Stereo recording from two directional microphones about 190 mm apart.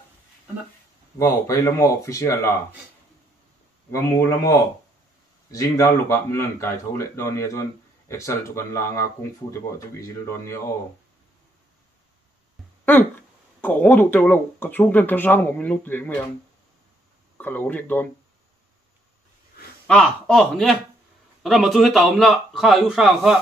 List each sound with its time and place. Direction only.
1.1 s speech: 15° left (ahead or behind)
3.9 s speech: 15° left (ahead or behind)
13.6 s speech: 10° left (ahead or behind)
17.4 s speech: 10° left (ahead or behind)
19.9 s a man's voice: 5° left (ahead or behind)